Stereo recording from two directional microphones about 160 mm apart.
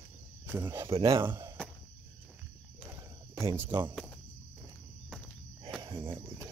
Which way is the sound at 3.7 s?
25° right (ahead or behind).